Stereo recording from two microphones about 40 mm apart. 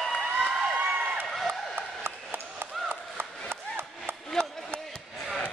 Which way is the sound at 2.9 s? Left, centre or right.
Right.